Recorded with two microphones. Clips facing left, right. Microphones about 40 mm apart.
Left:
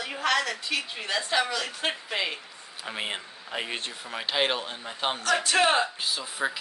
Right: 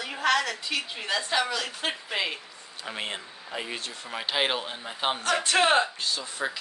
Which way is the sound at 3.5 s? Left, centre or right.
Left.